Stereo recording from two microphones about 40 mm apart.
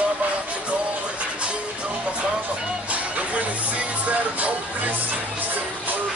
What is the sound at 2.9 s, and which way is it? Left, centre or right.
Music, right.